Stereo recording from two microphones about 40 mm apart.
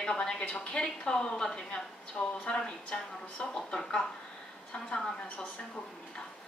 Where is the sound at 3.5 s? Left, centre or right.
Centre.